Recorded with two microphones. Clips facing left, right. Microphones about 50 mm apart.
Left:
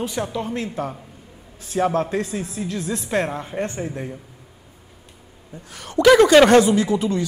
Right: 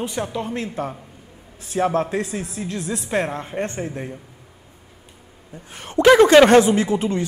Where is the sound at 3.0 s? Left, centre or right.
Centre.